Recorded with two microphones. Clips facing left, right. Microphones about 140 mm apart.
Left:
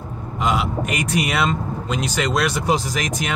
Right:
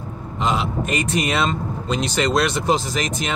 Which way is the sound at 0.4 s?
10° left (ahead or behind).